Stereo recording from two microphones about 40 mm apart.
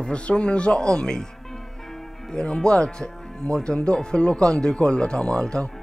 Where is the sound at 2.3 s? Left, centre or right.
Left.